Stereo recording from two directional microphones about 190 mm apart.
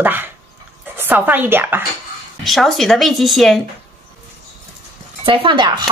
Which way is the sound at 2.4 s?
Centre (ahead or behind).